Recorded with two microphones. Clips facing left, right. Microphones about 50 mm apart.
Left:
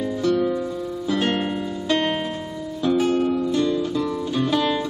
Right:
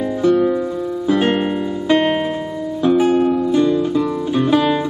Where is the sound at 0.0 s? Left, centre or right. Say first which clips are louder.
Right 6 dB; centre.